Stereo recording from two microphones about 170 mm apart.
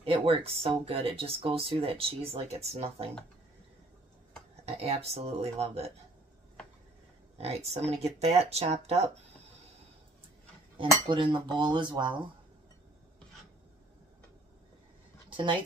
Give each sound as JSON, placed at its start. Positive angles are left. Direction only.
{"t": 0.0, "sound": "speech", "side_deg": -35}
{"t": 4.6, "sound": "speech", "side_deg": -35}
{"t": 7.3, "sound": "speech", "side_deg": -35}
{"t": 11.1, "sound": "cutlery", "side_deg": -30}
{"t": 15.2, "sound": "a sound", "side_deg": -30}